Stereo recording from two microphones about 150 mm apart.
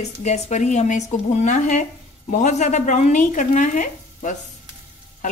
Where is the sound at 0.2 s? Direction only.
50° left (ahead or behind).